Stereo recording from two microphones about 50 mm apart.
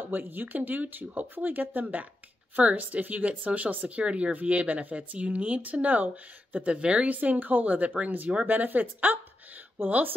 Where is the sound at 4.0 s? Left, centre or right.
Right.